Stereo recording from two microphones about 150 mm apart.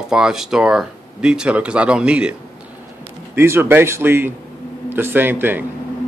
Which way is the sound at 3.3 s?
15° right (ahead or behind).